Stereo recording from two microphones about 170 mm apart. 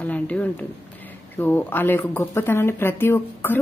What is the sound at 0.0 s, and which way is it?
A woman's voice, 10° left (ahead or behind).